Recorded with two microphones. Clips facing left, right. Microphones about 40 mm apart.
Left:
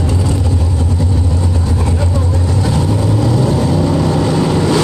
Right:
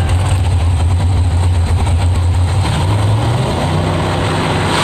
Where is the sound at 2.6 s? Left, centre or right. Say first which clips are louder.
Left 1 dB; right.